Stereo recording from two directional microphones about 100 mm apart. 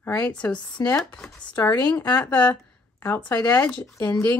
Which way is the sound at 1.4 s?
20° left (ahead or behind).